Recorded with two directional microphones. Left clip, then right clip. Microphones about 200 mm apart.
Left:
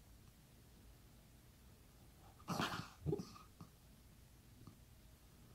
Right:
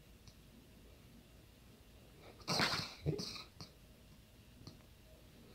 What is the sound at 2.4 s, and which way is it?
Dog, 20° right (ahead or behind).